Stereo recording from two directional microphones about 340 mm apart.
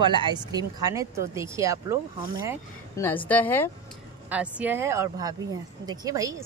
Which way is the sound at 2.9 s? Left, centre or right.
Centre.